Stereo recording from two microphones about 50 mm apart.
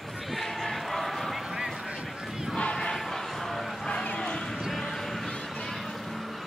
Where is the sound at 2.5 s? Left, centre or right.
Centre.